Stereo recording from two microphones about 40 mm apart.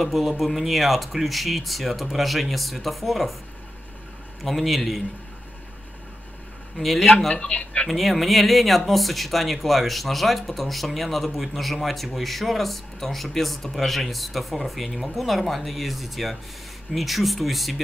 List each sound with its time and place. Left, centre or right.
0.0 s speech: centre
4.4 s speech: centre
6.8 s speech: centre
7.3 s speech: centre
7.9 s speech: centre